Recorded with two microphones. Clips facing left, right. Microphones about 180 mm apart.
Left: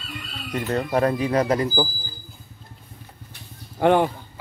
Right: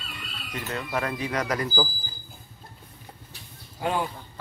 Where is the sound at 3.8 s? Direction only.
65° left (ahead or behind).